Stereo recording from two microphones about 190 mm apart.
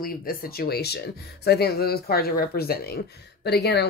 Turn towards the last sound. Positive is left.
turn(degrees=60)  # may be behind; listen again after turning